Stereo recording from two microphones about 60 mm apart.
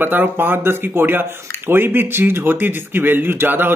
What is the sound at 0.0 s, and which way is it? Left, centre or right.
Speech, right.